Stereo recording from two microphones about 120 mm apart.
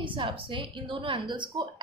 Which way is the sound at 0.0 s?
45° right (ahead or behind).